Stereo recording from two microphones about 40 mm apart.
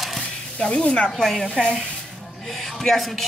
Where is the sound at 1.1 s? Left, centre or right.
Centre.